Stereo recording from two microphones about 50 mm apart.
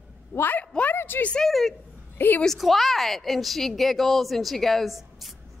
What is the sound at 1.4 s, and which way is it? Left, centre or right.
Speech, centre.